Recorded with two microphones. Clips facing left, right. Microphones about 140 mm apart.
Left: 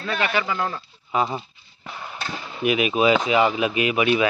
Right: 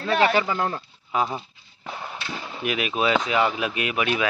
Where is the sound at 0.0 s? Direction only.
25° right (ahead or behind).